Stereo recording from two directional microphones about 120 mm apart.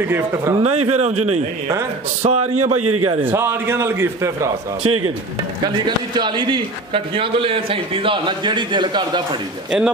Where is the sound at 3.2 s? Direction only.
15° right (ahead or behind).